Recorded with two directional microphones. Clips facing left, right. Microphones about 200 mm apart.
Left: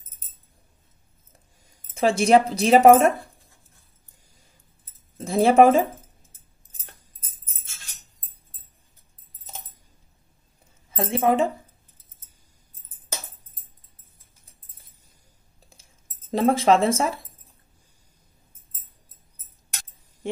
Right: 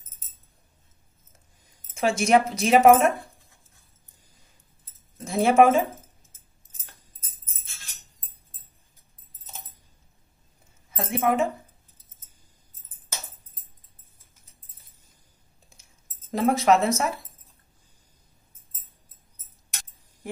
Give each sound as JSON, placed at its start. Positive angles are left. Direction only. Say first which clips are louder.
{"t": 2.0, "sound": "a woman's voice", "louder": "left 3 dB", "side_deg": 30}
{"t": 5.1, "sound": "keys jangling", "louder": "left 3 dB", "side_deg": 30}
{"t": 11.0, "sound": "speech", "louder": "left 3 dB", "side_deg": 30}
{"t": 15.8, "sound": "cutlery", "louder": "left 1 dB", "side_deg": 25}